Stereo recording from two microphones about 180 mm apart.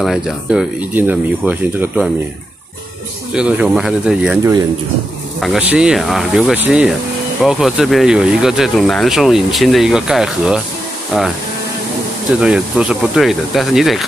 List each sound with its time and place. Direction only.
0.0 s speech: centre (ahead or behind)
3.3 s speech: 5° right (ahead or behind)
5.4 s speech: 5° right (ahead or behind)
12.4 s speech: 5° right (ahead or behind)